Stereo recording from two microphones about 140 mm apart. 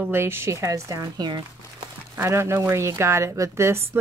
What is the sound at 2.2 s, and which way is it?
A woman's voice, 20° right (ahead or behind).